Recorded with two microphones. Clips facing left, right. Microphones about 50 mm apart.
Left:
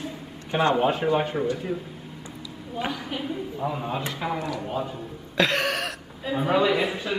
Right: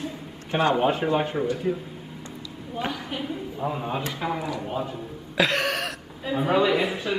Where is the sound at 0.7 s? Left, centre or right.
Centre.